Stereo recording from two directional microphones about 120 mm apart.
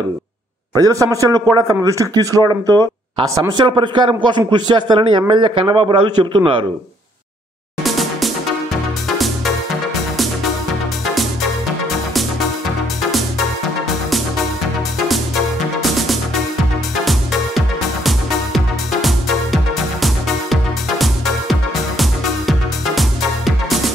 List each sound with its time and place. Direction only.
0.7 s a man's voice: 30° right (ahead or behind)
7.8 s music: centre (ahead or behind)
15.8 s music: centre (ahead or behind)